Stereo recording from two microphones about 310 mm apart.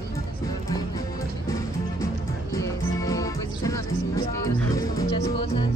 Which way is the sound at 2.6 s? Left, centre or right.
Centre.